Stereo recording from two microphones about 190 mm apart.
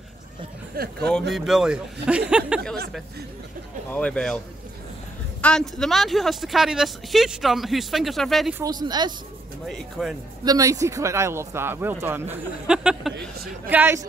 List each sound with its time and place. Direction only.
0.7 s speech: 55° right (ahead or behind)
1.3 s speech: centre (ahead or behind)
3.9 s speech: 5° left (ahead or behind)
5.4 s speech: 5° left (ahead or behind)
8.5 s speech: 20° right (ahead or behind)
9.7 s speech: centre (ahead or behind)
10.4 s speech: 20° right (ahead or behind)